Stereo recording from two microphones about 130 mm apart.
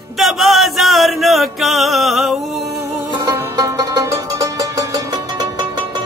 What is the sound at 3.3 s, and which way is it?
Music, 25° right (ahead or behind).